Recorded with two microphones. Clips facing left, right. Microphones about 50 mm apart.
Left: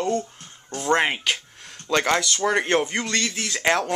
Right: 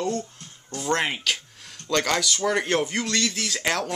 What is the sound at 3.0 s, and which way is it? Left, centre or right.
Speech, centre.